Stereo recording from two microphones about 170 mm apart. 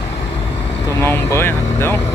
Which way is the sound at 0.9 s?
15° left (ahead or behind).